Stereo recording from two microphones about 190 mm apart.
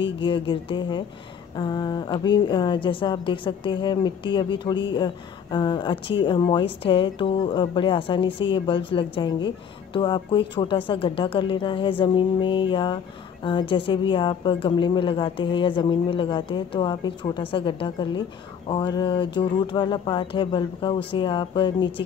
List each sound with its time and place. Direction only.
0.0 s a woman's voice: 25° left (ahead or behind)